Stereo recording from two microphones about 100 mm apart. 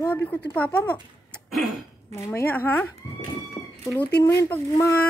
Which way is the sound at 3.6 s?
30° left (ahead or behind).